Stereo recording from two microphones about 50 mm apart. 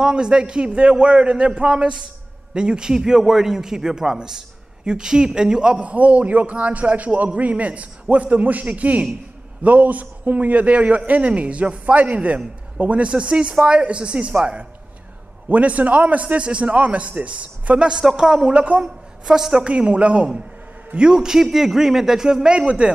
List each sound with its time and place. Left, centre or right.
0.0 s a man's voice: centre
15.5 s a man's voice: right; by 18.6 s centre
18.6 s a man's voice: right
19.2 s a man's voice: centre
19.6 s a man's voice: right